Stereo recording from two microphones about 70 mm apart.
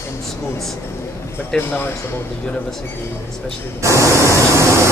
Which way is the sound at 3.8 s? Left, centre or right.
Right.